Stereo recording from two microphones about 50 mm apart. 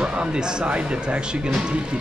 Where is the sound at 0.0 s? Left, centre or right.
Centre.